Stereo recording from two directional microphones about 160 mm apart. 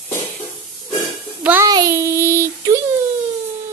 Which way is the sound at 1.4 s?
10° right (ahead or behind).